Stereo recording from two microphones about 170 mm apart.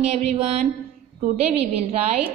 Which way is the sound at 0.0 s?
40° right (ahead or behind).